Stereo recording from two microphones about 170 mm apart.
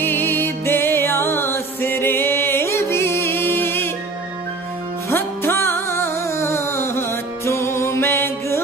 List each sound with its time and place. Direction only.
0.0 s music: 15° left (ahead or behind)
5.1 s music: 15° left (ahead or behind)